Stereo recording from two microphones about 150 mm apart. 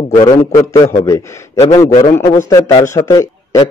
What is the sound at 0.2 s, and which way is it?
A man's voice, 25° left (ahead or behind).